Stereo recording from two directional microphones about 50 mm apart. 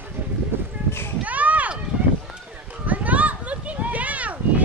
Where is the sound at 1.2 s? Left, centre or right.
Right.